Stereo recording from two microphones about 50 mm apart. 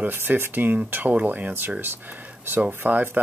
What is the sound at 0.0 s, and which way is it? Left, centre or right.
Speech, right.